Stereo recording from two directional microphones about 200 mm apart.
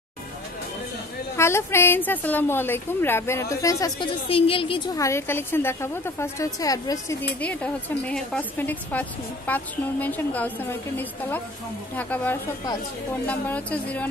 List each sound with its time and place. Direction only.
1.3 s a woman's voice: 15° left (ahead or behind)